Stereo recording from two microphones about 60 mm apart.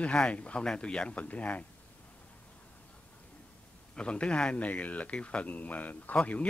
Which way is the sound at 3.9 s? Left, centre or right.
Centre.